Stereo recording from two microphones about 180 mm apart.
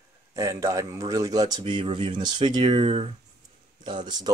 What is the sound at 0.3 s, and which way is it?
Speech, 15° right (ahead or behind).